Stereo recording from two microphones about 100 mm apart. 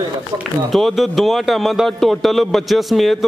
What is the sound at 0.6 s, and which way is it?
A man's voice, centre (ahead or behind).